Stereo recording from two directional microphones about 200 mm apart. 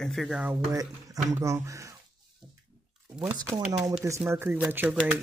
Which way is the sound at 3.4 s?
20° right (ahead or behind).